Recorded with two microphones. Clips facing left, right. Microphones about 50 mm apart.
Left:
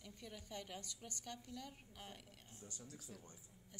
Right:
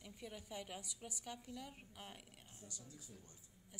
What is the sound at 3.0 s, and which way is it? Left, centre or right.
Speech, left.